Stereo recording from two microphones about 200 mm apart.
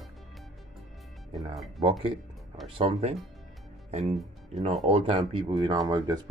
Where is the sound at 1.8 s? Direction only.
25° right (ahead or behind).